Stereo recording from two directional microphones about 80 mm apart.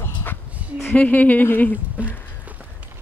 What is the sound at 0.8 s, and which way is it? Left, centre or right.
Speech, centre.